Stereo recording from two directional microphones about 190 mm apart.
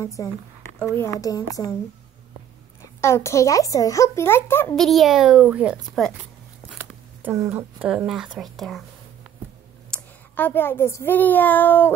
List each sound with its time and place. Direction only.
0.0 s a child's voice: 15° left (ahead or behind)
3.0 s a child's voice: 15° left (ahead or behind)
4.7 s a child's voice: centre (ahead or behind)
9.8 s a child's voice: 10° left (ahead or behind)